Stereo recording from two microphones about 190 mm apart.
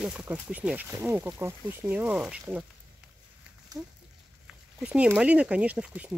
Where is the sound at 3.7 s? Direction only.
20° right (ahead or behind).